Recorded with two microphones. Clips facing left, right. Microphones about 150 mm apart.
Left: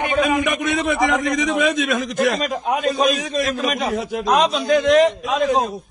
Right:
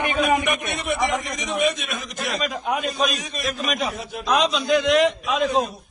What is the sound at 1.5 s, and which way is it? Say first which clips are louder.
Speech: even; 90° left.